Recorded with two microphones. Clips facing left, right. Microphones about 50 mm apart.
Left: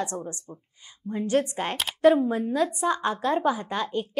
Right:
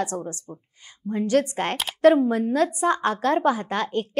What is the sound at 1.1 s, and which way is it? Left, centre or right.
Speech, centre.